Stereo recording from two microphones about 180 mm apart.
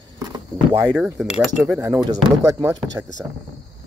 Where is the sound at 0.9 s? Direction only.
5° right (ahead or behind).